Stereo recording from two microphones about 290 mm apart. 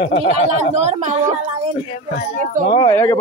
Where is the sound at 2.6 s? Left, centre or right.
Centre.